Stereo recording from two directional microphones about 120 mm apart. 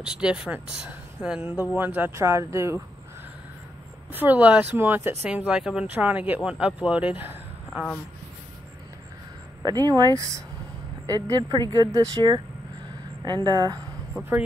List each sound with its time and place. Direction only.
0.0 s speech: 10° right (ahead or behind); by 2.8 s 25° right (ahead or behind)
4.1 s speech: 15° right (ahead or behind)
5.3 s speech: 5° right (ahead or behind)
9.6 s speech: 35° right (ahead or behind)